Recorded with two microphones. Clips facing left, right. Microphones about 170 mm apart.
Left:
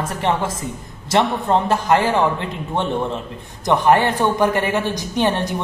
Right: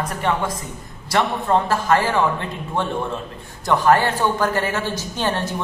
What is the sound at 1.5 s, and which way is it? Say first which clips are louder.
A man's voice: left 1 dB; 20° left (ahead or behind).